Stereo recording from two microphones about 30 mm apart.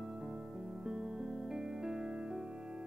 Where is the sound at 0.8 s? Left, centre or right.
Centre.